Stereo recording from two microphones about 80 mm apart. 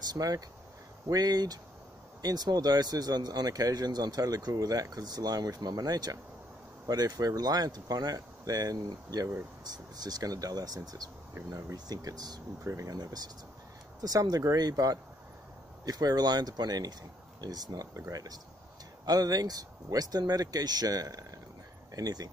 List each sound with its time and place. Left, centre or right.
0.0 s speech: right